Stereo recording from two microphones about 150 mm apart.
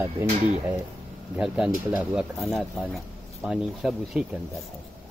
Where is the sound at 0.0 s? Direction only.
15° right (ahead or behind).